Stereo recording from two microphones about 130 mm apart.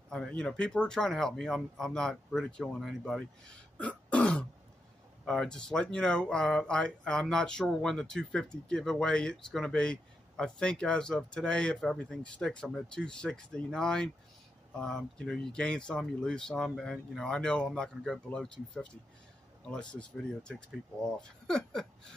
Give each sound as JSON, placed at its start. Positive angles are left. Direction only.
{"t": 0.1, "sound": "speech", "side_deg": 5}